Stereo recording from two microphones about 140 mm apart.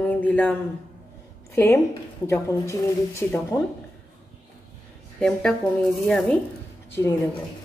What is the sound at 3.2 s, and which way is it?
Speech, 15° left (ahead or behind).